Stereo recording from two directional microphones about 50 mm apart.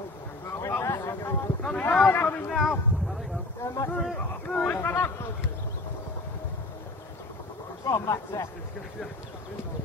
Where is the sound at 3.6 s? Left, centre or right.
Left.